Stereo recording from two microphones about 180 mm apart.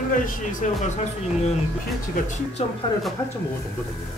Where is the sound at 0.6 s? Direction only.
40° left (ahead or behind).